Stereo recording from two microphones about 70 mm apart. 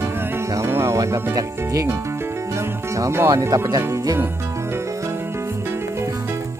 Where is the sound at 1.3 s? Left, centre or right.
Right.